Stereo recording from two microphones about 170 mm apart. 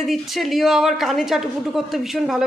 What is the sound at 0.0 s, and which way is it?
A woman's voice, centre (ahead or behind).